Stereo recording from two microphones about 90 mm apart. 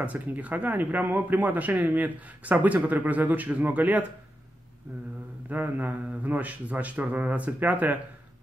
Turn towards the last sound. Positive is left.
turn(degrees=-15)  # may be behind; listen again after turning